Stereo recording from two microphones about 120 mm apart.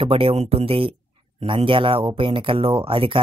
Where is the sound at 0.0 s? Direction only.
50° right (ahead or behind).